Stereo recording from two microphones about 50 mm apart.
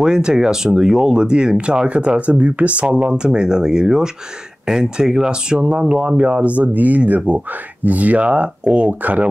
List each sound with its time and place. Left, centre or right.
0.0 s speech: centre
3.1 s speech: centre